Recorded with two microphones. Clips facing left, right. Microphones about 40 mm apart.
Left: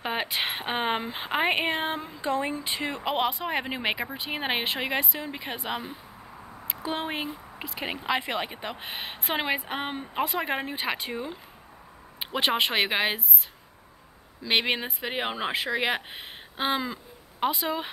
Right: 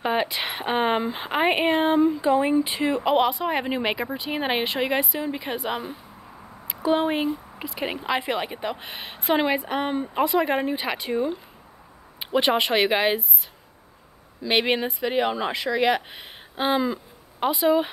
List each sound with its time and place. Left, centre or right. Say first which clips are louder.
0.0 s a sound: right 6 dB; centre
0.3 s speech: right 3 dB; centre
2.3 s speech: right 8 dB; centre
14.4 s speech: right 4 dB; centre
15.0 s speech: right 6 dB; centre
16.5 s speech: right 5 dB; centre